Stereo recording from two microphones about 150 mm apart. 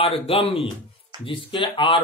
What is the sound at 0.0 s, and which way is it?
Speech, 40° left (ahead or behind).